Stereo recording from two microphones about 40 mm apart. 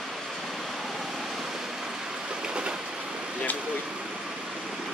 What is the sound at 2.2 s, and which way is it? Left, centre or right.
Train, right.